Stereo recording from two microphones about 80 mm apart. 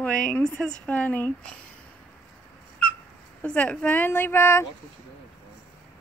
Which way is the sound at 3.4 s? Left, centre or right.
Centre.